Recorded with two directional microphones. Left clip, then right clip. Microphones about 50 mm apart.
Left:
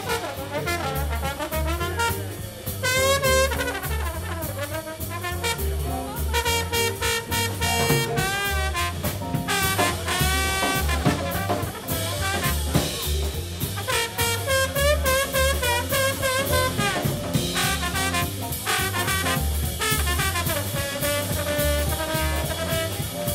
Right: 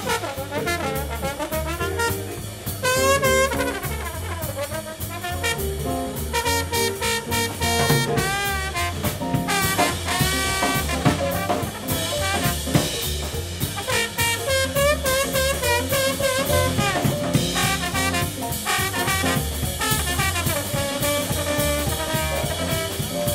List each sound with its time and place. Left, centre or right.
0.1 s brass instrument: centre
2.8 s music: centre
6.3 s music: centre
10.3 s swing music: centre
11.0 s music: right
12.3 s music: centre
13.8 s music: centre
16.4 s music: right
16.7 s music: centre
17.3 s music: centre
17.6 s music: centre
21.5 s brass instrument: right
22.1 s music: centre